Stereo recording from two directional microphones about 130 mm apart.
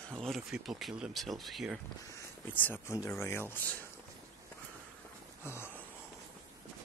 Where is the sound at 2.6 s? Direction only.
15° left (ahead or behind).